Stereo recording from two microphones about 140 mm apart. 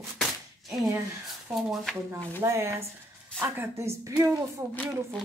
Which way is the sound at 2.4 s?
20° right (ahead or behind).